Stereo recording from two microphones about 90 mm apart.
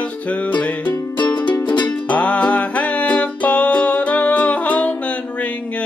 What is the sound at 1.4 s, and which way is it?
Music, 15° left (ahead or behind).